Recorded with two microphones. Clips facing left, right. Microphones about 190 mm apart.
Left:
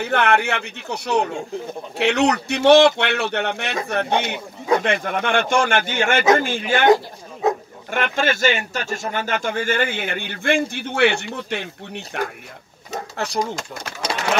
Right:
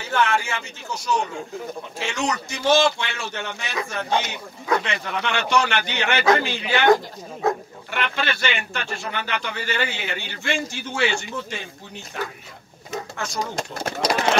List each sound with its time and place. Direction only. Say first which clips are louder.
0.0 s speech: left 4 dB; 60° left (ahead or behind)
7.9 s speech: left 5 dB; 45° left (ahead or behind); by 12.3 s 65° left (ahead or behind)
13.2 s speech: left 6 dB; 35° left (ahead or behind)
13.6 s speech: right 4 dB; 35° right (ahead or behind)